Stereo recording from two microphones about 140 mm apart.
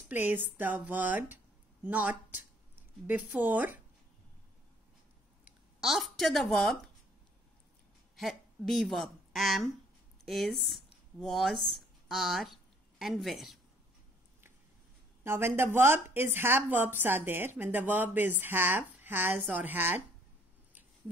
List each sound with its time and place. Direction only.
0.1 s speech: 15° right (ahead or behind)
5.4 s speech: 5° right (ahead or behind)
8.2 s a woman's voice: centre (ahead or behind)
15.2 s speech: 15° right (ahead or behind)